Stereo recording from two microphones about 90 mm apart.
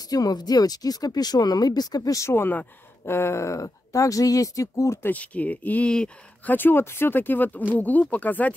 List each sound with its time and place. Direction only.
0.1 s speech: 45° left (ahead or behind)
2.3 s speech: 25° left (ahead or behind)
5.1 s speech: 15° left (ahead or behind)